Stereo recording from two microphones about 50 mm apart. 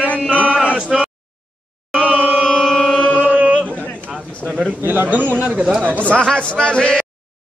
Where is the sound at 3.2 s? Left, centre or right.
Right.